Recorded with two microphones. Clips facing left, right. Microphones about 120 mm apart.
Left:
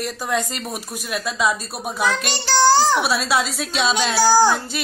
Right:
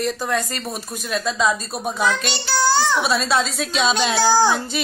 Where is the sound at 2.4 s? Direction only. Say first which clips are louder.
Left 4 dB; 40° left (ahead or behind).